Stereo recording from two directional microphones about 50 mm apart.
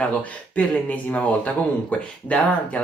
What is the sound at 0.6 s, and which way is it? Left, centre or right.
Speech, left.